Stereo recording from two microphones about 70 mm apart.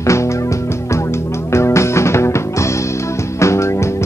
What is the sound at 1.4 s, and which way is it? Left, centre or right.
Music, left.